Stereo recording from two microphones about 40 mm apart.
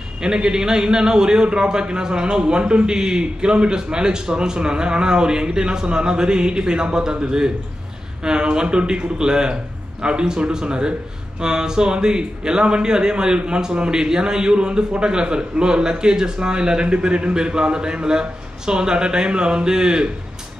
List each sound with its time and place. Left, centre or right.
0.2 s a man's voice: centre